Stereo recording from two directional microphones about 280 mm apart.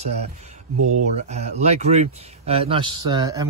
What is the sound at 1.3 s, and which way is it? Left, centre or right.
Speech, right.